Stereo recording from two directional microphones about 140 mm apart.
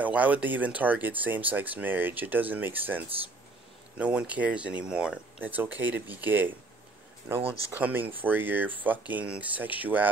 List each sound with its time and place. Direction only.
0.0 s speech: 10° right (ahead or behind)
4.0 s speech: 10° right (ahead or behind)
7.7 s speech: 15° right (ahead or behind)